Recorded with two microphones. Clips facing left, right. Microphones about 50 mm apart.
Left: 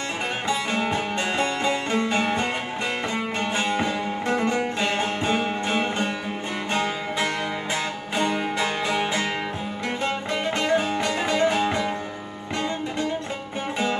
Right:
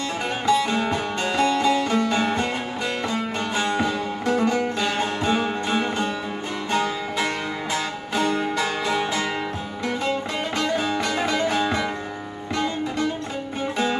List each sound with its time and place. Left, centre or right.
0.5 s music: left